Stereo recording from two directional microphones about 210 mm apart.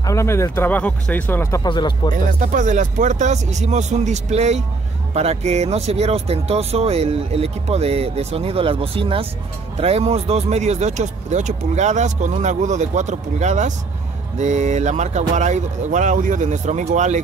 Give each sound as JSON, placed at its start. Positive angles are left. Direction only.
{"t": 0.0, "sound": "speech", "side_deg": 15}
{"t": 2.5, "sound": "speech", "side_deg": -35}